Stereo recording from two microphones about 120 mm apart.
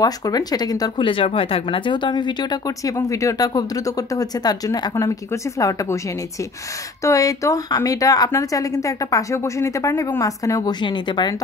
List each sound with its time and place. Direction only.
0.0 s speech: 30° left (ahead or behind)
7.0 s a woman's voice: 25° left (ahead or behind)